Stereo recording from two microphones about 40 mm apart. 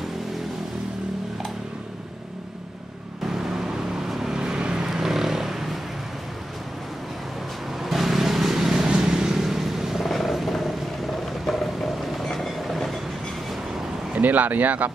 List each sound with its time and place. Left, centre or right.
3.3 s vehicle: centre
7.8 s vehicle: centre
10.0 s wild animals: centre
11.4 s train: centre
14.1 s speech: right